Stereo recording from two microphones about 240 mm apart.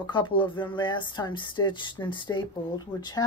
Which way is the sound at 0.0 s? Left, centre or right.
Centre.